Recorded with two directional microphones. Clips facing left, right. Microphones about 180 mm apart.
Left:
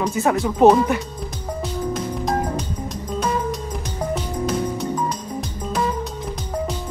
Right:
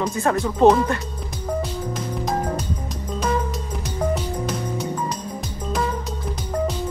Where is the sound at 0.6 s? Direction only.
15° left (ahead or behind).